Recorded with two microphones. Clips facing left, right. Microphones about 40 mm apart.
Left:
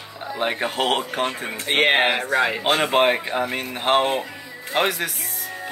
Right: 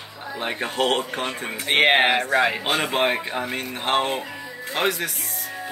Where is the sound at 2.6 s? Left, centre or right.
Centre.